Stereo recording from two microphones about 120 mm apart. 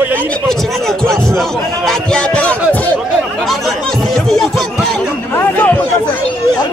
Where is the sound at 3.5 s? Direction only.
Centre (ahead or behind).